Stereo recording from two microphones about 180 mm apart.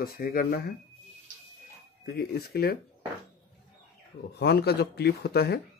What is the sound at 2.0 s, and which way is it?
Speech, 60° left (ahead or behind).